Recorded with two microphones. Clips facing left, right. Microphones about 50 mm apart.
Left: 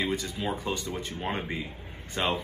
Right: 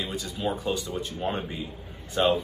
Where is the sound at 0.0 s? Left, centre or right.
Left.